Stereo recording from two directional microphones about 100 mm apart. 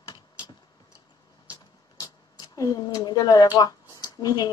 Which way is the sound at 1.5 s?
35° left (ahead or behind).